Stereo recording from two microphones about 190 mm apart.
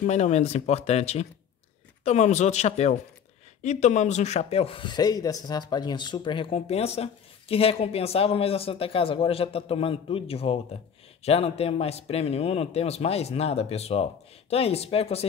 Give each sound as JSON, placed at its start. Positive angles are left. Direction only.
{"t": 0.0, "sound": "speech", "side_deg": 35}